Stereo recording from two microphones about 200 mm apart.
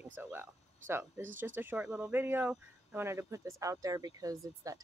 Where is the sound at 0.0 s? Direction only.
10° right (ahead or behind).